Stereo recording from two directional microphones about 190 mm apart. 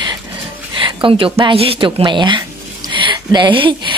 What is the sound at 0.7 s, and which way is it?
Music, 25° right (ahead or behind).